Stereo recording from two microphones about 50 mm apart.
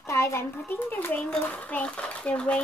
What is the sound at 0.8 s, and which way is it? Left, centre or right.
A child's voice, left.